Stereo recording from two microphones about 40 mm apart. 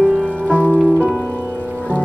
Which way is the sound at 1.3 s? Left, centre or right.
Left.